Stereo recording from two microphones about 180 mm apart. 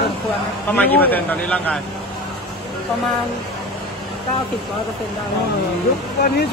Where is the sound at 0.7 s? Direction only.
10° left (ahead or behind).